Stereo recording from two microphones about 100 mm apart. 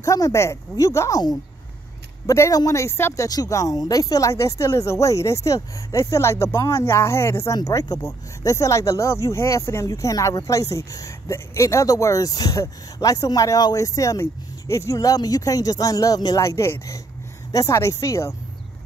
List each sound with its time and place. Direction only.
0.0 s speech: 30° left (ahead or behind)
3.3 s speech: 35° left (ahead or behind)
7.5 s speech: 40° left (ahead or behind)